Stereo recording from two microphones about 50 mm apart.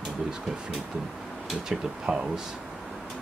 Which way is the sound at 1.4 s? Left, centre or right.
Centre.